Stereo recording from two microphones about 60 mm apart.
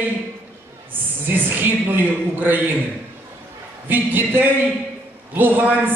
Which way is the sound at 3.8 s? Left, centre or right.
Right.